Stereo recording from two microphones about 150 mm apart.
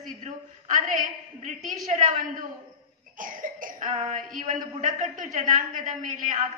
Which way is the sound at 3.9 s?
55° right (ahead or behind).